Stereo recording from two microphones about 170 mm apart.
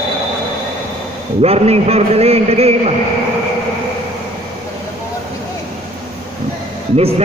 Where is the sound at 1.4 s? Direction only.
35° right (ahead or behind).